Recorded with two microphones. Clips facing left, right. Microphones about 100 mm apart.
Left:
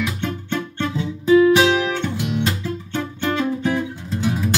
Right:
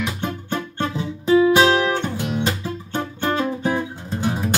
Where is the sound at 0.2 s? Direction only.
40° right (ahead or behind).